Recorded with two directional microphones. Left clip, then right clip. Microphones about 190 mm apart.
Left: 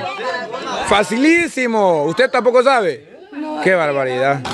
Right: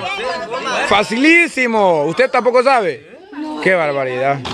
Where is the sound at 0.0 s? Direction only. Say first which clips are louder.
Right 1 dB; 55° right (ahead or behind).